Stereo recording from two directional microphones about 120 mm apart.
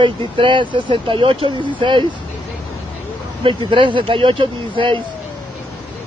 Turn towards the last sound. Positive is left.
turn(degrees=-45)  # may be behind; listen again after turning